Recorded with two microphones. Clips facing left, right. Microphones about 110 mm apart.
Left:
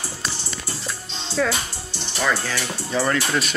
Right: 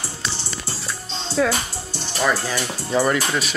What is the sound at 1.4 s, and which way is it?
Speech, 10° right (ahead or behind).